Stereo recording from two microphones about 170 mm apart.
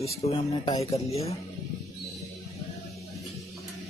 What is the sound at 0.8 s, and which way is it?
Speech, 35° left (ahead or behind).